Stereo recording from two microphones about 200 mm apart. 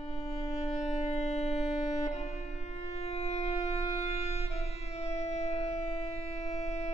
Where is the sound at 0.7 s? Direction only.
35° left (ahead or behind).